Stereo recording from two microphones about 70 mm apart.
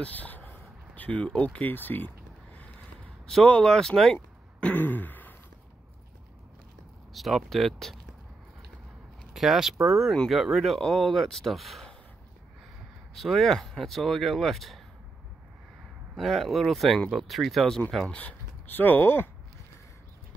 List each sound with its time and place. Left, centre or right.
0.0 s a sound: left
3.3 s speech: centre
4.6 s throat clearing: left
7.2 s speech: centre
9.3 s speech: centre
13.1 s speech: centre
16.2 s speech: centre; by 19.2 s left